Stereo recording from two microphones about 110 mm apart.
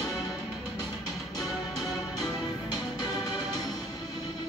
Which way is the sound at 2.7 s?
35° left (ahead or behind).